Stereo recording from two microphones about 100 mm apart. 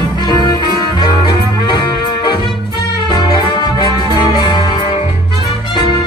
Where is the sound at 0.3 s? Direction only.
45° left (ahead or behind).